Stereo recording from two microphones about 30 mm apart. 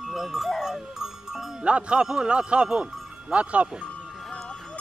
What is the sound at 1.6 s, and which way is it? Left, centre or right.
Speech, right.